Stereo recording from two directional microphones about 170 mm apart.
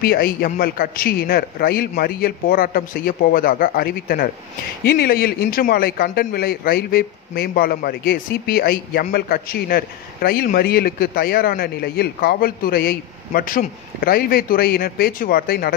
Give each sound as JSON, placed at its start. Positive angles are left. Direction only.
{"t": 0.0, "sound": "a man's voice", "side_deg": 65}